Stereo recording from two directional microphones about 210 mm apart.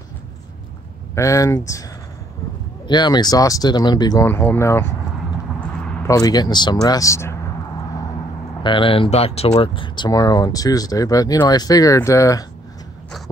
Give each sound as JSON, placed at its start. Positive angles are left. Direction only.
{"t": 1.1, "sound": "speech", "side_deg": 15}
{"t": 2.9, "sound": "speech", "side_deg": 20}
{"t": 5.6, "sound": "a sound", "side_deg": 5}
{"t": 6.1, "sound": "speech", "side_deg": 20}
{"t": 8.6, "sound": "speech", "side_deg": 25}